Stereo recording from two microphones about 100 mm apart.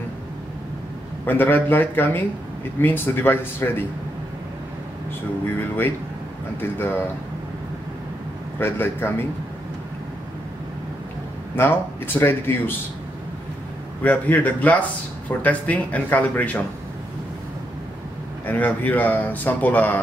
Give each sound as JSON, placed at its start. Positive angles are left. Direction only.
{"t": 1.2, "sound": "speech", "side_deg": 20}
{"t": 5.6, "sound": "speech", "side_deg": 20}
{"t": 8.5, "sound": "speech", "side_deg": 20}
{"t": 11.5, "sound": "speech", "side_deg": 20}
{"t": 14.0, "sound": "speech", "side_deg": 15}
{"t": 18.5, "sound": "speech", "side_deg": 15}